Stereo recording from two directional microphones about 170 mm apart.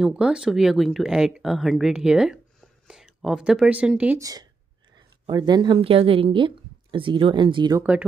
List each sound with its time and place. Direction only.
0.0 s speech: 5° right (ahead or behind)
4.2 s a woman's voice: 20° right (ahead or behind)